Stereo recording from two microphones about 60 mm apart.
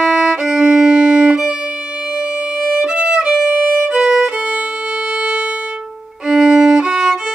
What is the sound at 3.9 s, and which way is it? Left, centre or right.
Violin, centre.